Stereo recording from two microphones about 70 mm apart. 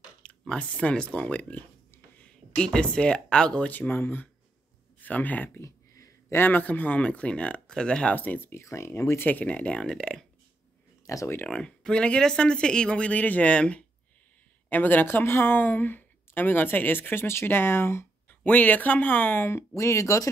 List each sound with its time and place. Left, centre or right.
0.2 s speech: centre
3.7 s speech: left
8.2 s speech: left
8.6 s speech: left
9.3 s speech: left
11.1 s speech: left
11.4 s speech: centre
14.7 s speech: left
18.4 s speech: left